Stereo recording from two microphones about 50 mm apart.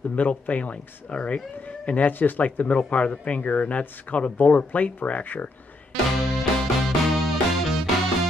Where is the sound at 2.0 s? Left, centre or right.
Left.